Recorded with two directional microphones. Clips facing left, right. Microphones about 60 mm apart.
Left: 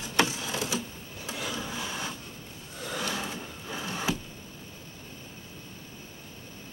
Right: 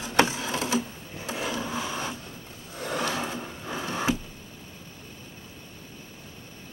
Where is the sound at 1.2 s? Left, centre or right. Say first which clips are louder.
Right 4 dB; right.